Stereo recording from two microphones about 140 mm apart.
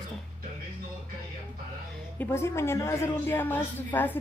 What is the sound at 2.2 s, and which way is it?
Speech, 20° left (ahead or behind).